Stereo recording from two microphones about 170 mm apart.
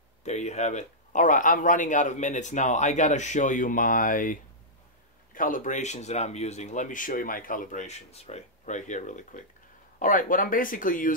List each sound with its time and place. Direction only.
0.2 s speech: 40° left (ahead or behind)